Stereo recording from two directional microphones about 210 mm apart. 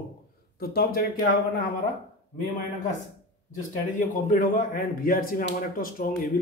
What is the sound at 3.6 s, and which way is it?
A man's voice, 40° left (ahead or behind).